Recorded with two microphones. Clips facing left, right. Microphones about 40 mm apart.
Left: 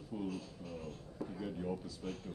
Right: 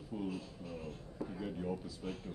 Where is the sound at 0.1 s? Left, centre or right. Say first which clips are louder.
Right 1 dB; centre.